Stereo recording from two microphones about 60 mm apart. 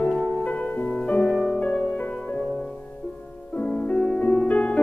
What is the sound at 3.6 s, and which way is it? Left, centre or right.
Music, centre.